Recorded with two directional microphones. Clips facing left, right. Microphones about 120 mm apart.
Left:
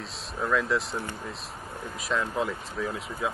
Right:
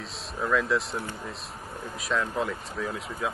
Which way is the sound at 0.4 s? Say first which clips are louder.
Right 1 dB; centre (ahead or behind).